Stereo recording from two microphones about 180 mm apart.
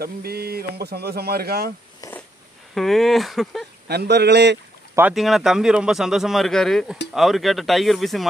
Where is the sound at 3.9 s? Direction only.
65° right (ahead or behind).